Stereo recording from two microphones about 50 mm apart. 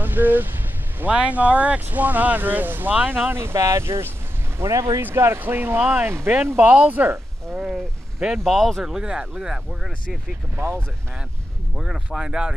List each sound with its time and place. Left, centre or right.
0.0 s vehicle: right
1.1 s speech: right
3.3 s speech: right
3.5 s speech: right
5.1 s speech: right
5.4 s speech: right
6.0 s speech: right
6.6 s speech: right
7.5 s a sound: centre
8.5 s speech: centre
8.8 s speech: centre
10.5 s speech: right
11.7 s speech: centre